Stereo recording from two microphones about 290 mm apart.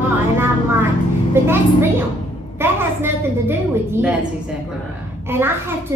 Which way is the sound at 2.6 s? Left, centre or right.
Centre.